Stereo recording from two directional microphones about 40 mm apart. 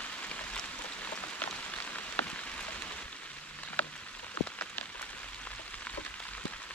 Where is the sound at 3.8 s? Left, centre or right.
Left.